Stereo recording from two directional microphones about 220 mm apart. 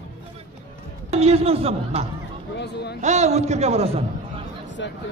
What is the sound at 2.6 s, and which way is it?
Speech, 50° left (ahead or behind).